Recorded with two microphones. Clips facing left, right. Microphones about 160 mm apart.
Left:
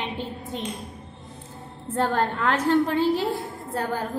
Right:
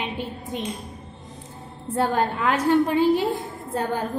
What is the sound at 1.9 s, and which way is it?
A woman's voice, 10° right (ahead or behind).